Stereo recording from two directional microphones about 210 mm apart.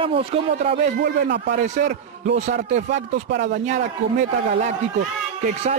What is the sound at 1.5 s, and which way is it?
A man's voice, 35° right (ahead or behind).